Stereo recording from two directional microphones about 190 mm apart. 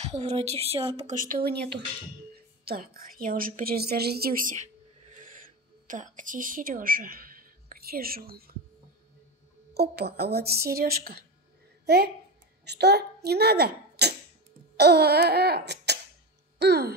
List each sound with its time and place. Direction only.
0.0 s a woman's voice: 35° right (ahead or behind)
5.9 s a woman's voice: 40° right (ahead or behind)
9.8 s a child's voice: 55° right (ahead or behind)
14.8 s laughter: 55° right (ahead or behind)
16.5 s a sound: 60° right (ahead or behind)